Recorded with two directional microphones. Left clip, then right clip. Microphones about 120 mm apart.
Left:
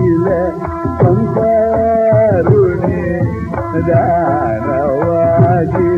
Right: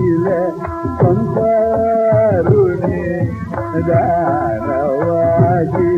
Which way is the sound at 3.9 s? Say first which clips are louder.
Left 2 dB; 25° right (ahead or behind).